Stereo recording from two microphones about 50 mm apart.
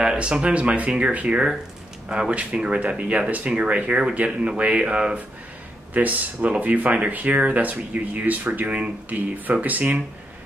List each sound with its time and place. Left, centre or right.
0.0 s speech: centre
2.0 s speech: centre; by 10.0 s right